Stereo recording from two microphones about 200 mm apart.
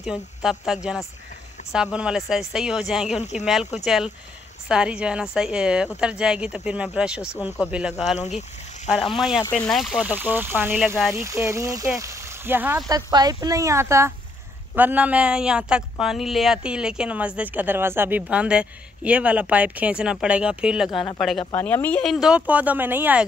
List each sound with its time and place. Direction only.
0.0 s speech: 5° right (ahead or behind)
3.1 s speech: 35° left (ahead or behind)
3.8 s speech: centre (ahead or behind)
8.2 s speech: 35° left (ahead or behind)
8.9 s speech: centre (ahead or behind)
10.0 s speech: 10° right (ahead or behind)
20.9 s speech: 25° left (ahead or behind)
21.2 s speech: centre (ahead or behind)